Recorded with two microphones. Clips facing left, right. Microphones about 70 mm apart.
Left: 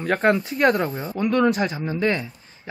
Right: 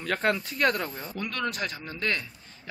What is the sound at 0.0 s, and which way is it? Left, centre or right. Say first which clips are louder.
Speech: left 7 dB; left.